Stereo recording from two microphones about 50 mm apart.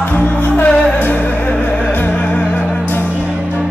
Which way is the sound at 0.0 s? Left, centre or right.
Left.